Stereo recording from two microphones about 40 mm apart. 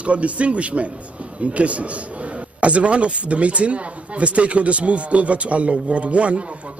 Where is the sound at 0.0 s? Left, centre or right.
Right.